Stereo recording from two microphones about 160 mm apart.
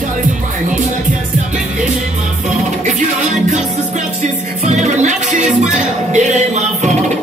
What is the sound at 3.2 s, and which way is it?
Music, 50° right (ahead or behind).